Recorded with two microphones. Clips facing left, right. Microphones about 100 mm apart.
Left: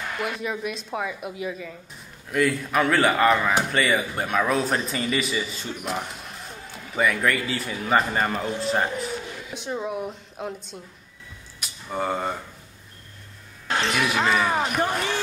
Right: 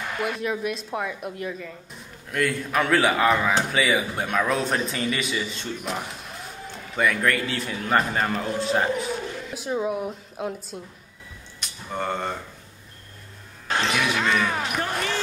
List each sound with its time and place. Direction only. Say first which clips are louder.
0.2 s a man's voice: right 3 dB; centre (ahead or behind)
13.9 s speech: left 2 dB; 5° left (ahead or behind)